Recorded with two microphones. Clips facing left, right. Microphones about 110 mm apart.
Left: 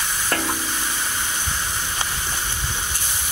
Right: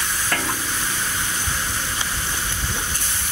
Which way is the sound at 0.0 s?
5° left (ahead or behind).